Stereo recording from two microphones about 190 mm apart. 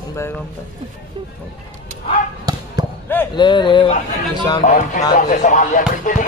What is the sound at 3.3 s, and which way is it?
Speech, 25° left (ahead or behind).